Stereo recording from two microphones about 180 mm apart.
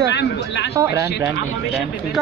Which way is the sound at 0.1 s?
70° left (ahead or behind).